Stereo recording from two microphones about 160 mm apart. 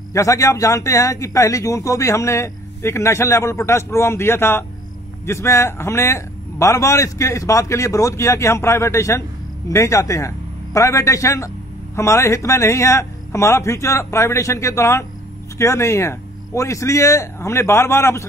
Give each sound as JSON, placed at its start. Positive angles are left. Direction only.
{"t": 0.1, "sound": "a man's voice", "side_deg": 20}